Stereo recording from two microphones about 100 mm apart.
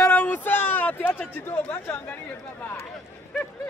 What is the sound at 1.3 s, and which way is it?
Speech, 20° left (ahead or behind).